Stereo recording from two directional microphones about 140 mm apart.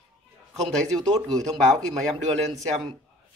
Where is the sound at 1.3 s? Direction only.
25° right (ahead or behind).